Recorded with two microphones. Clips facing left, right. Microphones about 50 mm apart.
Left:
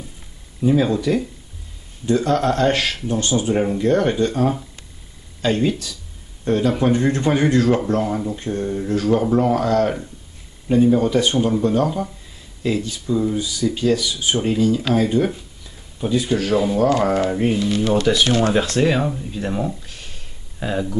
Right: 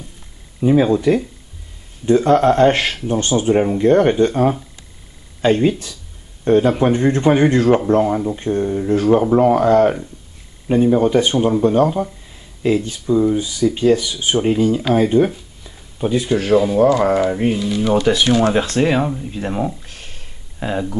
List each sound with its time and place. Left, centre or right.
0.6 s a man's voice: right
12.8 s speech: right
13.1 s speech: centre
13.4 s speech: right; by 19.9 s centre
19.9 s a sound: right
20.5 s speech: centre